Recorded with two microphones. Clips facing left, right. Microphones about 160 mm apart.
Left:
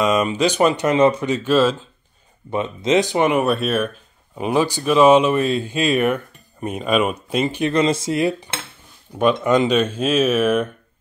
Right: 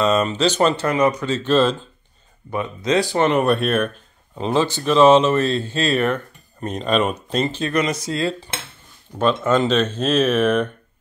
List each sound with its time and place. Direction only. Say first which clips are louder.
0.0 s speech: even; 10° left (ahead or behind)
1.3 s speech: left 1 dB; 10° left (ahead or behind)
2.5 s speech: left 2 dB; 20° left (ahead or behind)
7.7 s speech: left 5 dB; 25° left (ahead or behind); by 10.7 s 5° left (ahead or behind)